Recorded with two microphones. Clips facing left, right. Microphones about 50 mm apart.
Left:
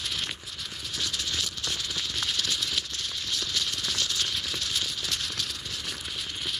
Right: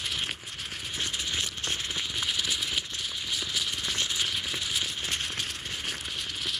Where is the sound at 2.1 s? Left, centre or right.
Centre.